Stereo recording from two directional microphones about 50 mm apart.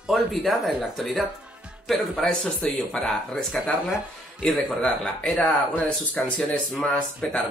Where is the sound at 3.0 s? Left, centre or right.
Centre.